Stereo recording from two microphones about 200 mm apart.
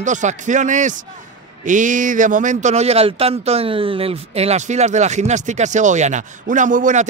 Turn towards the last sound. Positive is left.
turn(degrees=-40)  # may be behind; listen again after turning